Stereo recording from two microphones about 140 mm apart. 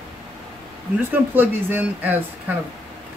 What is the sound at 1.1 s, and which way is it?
Speech, 15° right (ahead or behind).